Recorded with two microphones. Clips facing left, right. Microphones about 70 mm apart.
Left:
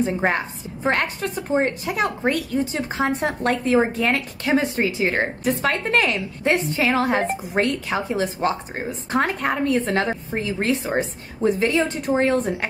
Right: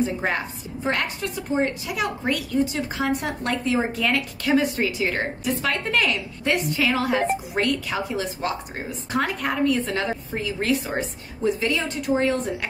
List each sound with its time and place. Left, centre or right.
0.0 s a woman's voice: left